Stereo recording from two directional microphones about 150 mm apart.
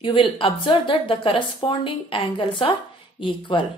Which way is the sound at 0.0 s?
35° left (ahead or behind).